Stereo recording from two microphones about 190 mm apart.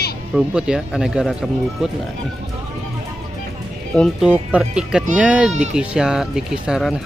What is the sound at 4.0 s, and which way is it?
Speech, 5° right (ahead or behind).